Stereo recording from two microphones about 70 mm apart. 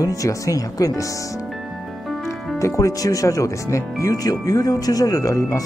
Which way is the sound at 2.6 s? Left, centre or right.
Left.